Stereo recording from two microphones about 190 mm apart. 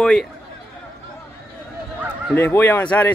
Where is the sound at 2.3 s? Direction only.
10° left (ahead or behind).